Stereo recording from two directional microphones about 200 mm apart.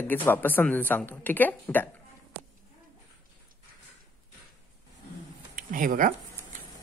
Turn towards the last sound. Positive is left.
turn(degrees=-40)  # may be behind; listen again after turning